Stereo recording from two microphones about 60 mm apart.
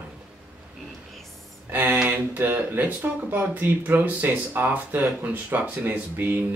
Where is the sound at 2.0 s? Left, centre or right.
Right.